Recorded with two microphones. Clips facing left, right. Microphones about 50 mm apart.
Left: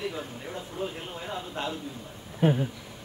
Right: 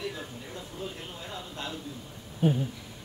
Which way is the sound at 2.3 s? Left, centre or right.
Left.